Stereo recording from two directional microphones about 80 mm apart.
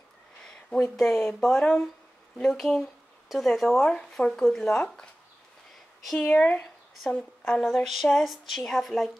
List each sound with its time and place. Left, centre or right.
0.5 s speech: centre
6.1 s a woman's voice: centre
7.6 s speech: centre